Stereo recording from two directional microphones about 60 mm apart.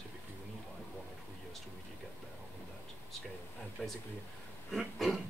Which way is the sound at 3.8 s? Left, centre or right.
Centre.